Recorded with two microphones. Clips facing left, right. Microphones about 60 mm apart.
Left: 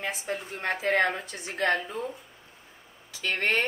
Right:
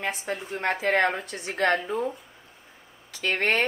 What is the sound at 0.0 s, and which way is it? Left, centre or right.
Speech, right.